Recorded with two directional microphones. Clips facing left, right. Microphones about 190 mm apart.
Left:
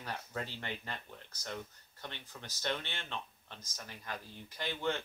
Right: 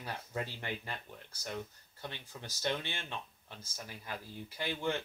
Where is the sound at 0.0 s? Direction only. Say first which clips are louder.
Right 1 dB; 10° right (ahead or behind).